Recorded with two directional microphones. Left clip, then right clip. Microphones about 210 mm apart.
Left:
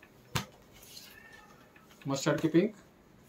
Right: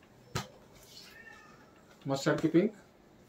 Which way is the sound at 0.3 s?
30° left (ahead or behind).